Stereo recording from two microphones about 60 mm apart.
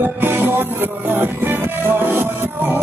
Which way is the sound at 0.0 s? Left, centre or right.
Right.